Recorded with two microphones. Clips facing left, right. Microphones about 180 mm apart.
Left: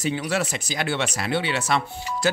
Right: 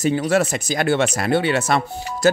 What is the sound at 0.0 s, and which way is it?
Speech, 45° right (ahead or behind).